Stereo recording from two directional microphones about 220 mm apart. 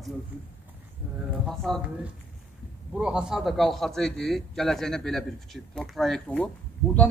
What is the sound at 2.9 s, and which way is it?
A man's voice, 5° right (ahead or behind).